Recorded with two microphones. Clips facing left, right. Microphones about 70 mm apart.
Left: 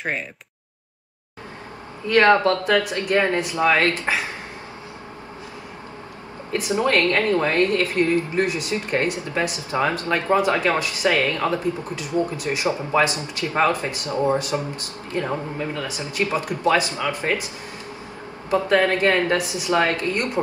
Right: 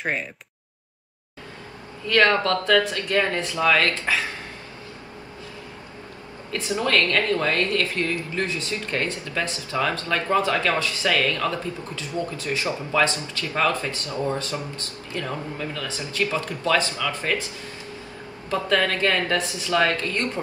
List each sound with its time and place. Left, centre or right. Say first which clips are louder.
0.0 s a sound: even; centre
2.0 s speech: left 4 dB; left
6.5 s speech: left 3 dB; left
18.5 s speech: left 4 dB; left